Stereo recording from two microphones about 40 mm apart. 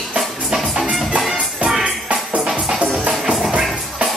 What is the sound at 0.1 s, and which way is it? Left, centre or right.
Music, centre.